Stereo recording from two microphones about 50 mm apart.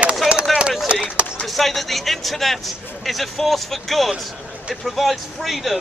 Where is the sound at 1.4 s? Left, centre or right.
Centre.